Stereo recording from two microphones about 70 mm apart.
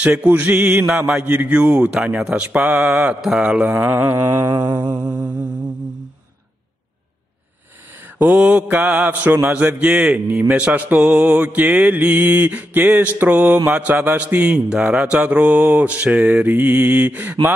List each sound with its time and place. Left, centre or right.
0.0 s mantra: centre
2.2 s speech: centre
3.2 s mantra: centre
3.4 s speech: centre
3.7 s mantra: right
8.5 s mantra: right
14.7 s mantra: centre